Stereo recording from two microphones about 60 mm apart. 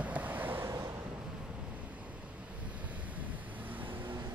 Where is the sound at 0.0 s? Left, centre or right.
Right.